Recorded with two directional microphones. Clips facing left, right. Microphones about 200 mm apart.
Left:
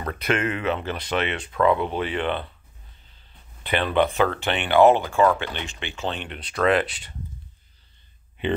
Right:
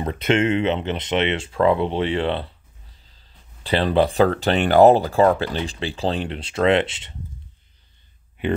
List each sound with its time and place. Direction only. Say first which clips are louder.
0.0 s speech: right 5 dB; 25° right (ahead or behind)